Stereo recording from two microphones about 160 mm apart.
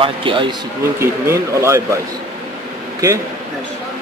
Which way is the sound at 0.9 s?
15° right (ahead or behind).